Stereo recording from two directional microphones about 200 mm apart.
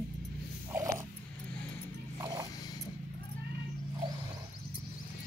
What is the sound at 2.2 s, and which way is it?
Music, 20° right (ahead or behind).